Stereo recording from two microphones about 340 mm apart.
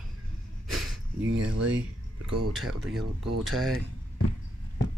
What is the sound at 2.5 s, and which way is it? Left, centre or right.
Speech, centre.